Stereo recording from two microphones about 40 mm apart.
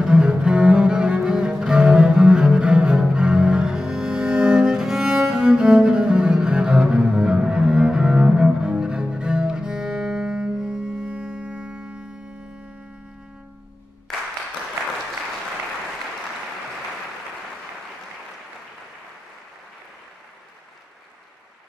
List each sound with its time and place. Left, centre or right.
0.1 s cello: right